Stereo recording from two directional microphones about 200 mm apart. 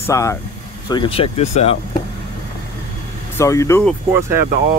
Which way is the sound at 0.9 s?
25° left (ahead or behind).